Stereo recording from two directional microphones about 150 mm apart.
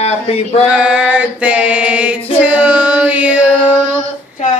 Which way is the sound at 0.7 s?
5° right (ahead or behind).